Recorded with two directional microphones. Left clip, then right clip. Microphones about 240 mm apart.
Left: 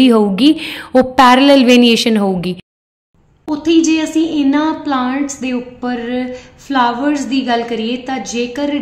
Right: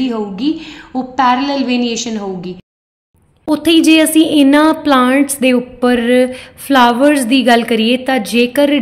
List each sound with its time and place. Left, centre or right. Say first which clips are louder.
0.0 s a woman's voice: left 7 dB; left
3.4 s a woman's voice: right 3 dB; right